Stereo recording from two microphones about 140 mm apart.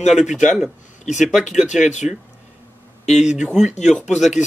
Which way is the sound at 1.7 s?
60° left (ahead or behind).